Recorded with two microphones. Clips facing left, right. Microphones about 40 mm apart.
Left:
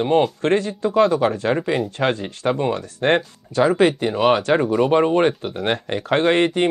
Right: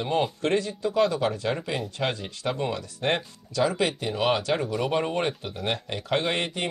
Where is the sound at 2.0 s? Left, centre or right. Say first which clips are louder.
Left 8 dB; left.